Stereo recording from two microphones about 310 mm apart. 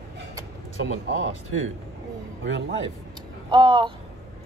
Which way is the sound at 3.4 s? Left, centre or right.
Centre.